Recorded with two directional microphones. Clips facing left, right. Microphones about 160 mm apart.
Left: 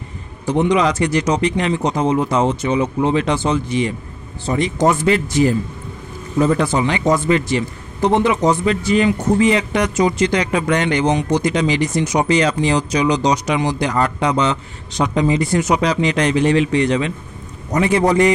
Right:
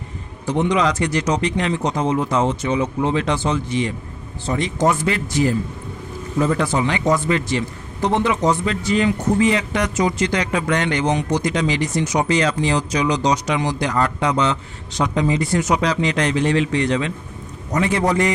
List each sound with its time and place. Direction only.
0.5 s a man's voice: 10° left (ahead or behind)
4.8 s a man's voice: 25° left (ahead or behind)